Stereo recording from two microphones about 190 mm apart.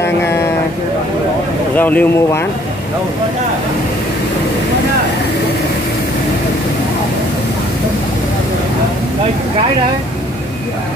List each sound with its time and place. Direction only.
1.8 s speech: 10° left (ahead or behind)